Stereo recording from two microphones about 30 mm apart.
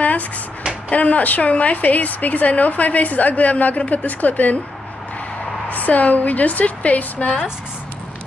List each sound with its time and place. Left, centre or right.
0.8 s a woman's voice: left
5.7 s a woman's voice: left